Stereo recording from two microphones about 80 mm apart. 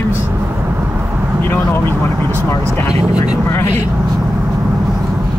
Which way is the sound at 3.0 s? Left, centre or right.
Centre.